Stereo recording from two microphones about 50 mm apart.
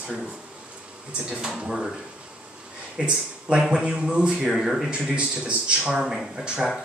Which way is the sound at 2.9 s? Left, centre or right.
Centre.